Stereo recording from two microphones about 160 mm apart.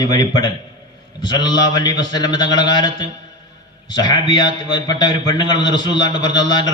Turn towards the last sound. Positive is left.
turn(degrees=25)  # may be behind; listen again after turning